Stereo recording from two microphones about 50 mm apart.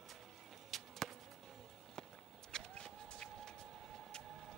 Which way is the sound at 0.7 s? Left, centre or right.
Centre.